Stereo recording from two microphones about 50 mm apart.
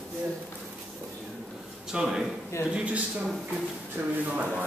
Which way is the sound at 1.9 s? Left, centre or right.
Centre.